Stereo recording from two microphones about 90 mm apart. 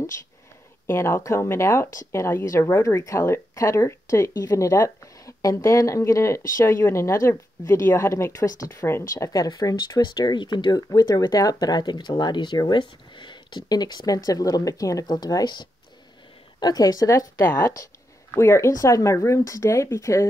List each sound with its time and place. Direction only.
0.8 s speech: 30° left (ahead or behind)
8.7 s speech: 30° left (ahead or behind)
9.3 s speech: 45° left (ahead or behind)